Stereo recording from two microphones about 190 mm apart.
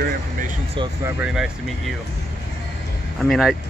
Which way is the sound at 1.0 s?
5° right (ahead or behind).